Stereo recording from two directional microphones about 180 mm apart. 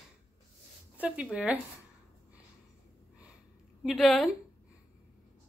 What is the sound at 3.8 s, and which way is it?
Speech, centre (ahead or behind).